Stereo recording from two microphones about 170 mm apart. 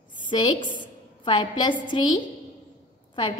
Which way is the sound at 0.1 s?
25° left (ahead or behind).